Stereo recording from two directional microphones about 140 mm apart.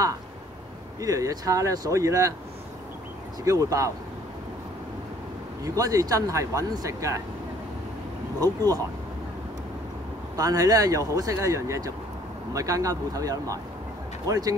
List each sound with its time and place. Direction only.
1.0 s speech: 25° right (ahead or behind)
3.4 s speech: 25° right (ahead or behind)
5.6 s speech: 25° right (ahead or behind)
8.4 s speech: 25° right (ahead or behind)
10.3 s speech: 25° right (ahead or behind)